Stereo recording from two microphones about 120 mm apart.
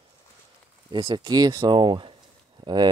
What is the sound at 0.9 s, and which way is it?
Speech, 40° right (ahead or behind).